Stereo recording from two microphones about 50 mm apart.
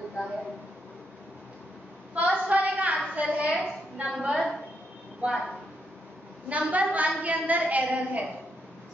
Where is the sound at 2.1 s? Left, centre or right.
Right.